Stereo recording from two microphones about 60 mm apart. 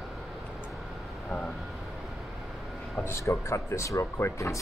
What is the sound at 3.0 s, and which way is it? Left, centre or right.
Speech, left.